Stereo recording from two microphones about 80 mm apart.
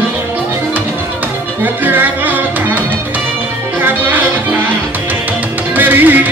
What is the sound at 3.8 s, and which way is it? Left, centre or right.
Music, right.